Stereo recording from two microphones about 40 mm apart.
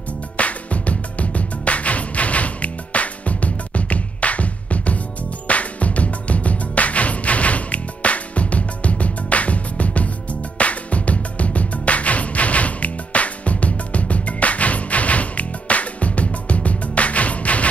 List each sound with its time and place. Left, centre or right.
0.4 s music: left